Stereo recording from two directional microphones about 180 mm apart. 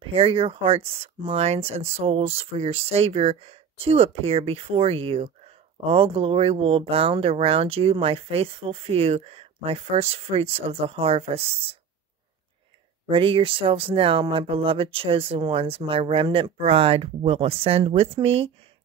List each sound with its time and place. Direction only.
0.0 s speech: 30° right (ahead or behind)
13.1 s speech: 30° right (ahead or behind)